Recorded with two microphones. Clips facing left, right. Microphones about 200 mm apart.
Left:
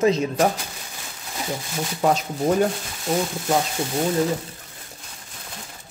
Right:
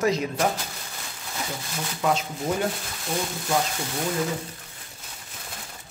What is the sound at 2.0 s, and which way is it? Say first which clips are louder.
Speech: left 4 dB; 40° left (ahead or behind).